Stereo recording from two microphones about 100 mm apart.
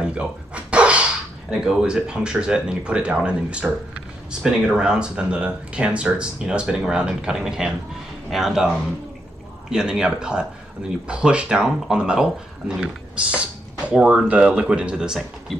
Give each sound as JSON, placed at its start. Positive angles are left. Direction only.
{"t": 0.0, "sound": "speech", "side_deg": -10}